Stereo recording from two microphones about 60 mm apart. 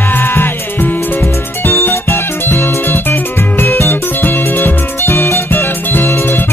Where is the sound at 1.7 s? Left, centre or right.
Left.